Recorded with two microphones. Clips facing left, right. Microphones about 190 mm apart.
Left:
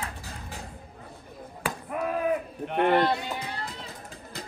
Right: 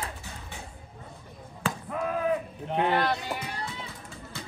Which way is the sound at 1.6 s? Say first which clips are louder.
Even; 15° left (ahead or behind).